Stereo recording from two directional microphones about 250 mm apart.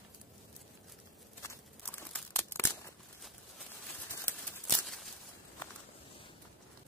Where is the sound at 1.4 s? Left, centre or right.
Centre.